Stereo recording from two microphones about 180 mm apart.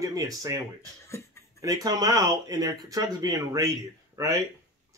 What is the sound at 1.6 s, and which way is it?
Speech, 20° right (ahead or behind).